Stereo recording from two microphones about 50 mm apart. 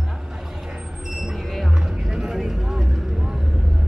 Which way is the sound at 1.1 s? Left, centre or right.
Centre.